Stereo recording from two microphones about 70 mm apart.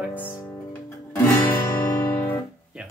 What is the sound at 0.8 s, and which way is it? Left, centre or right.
Music, left.